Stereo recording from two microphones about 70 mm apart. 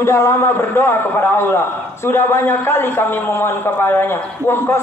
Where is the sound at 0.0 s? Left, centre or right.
Left.